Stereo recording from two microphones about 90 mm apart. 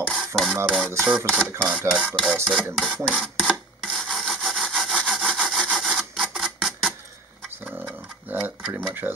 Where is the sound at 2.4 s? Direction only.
5° right (ahead or behind).